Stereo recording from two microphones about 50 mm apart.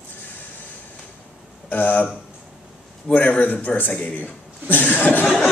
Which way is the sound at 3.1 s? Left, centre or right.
Left.